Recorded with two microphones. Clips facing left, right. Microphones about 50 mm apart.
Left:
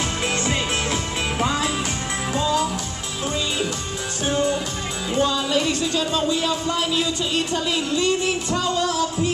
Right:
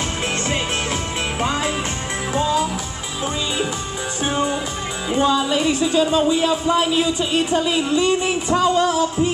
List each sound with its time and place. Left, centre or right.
1.4 s music: centre
4.3 s music: centre
5.1 s speech: centre